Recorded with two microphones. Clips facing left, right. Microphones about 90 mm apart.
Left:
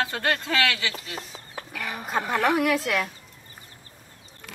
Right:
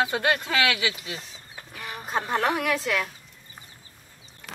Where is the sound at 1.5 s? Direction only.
80° left.